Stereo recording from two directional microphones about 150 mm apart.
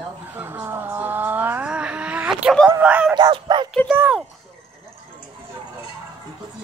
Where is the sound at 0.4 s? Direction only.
15° right (ahead or behind).